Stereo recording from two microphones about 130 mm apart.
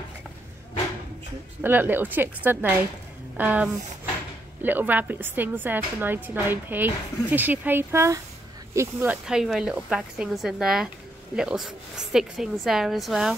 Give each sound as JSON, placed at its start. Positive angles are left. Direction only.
{"t": 1.6, "sound": "a woman's voice", "side_deg": -15}